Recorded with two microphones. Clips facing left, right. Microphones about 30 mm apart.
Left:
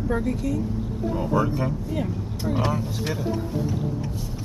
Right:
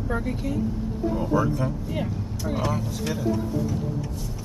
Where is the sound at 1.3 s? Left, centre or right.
Left.